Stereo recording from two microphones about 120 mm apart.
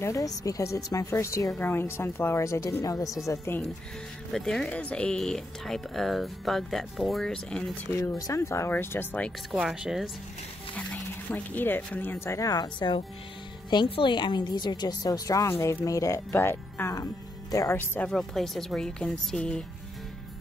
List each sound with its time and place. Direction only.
0.0 s a woman's voice: 25° left (ahead or behind)
3.3 s a woman's voice: 20° left (ahead or behind)
4.3 s speech: 5° left (ahead or behind)
8.2 s a woman's voice: 25° left (ahead or behind)
9.5 s speech: 5° right (ahead or behind)
10.8 s speech: 10° left (ahead or behind)
12.4 s a woman's voice: 30° left (ahead or behind)
17.7 s a woman's voice: 15° left (ahead or behind)
18.1 s speech: centre (ahead or behind)